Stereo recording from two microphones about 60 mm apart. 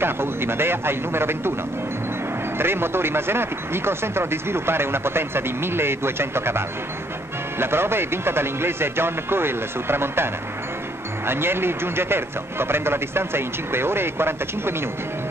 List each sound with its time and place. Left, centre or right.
0.0 s speech: right
2.5 s speech: right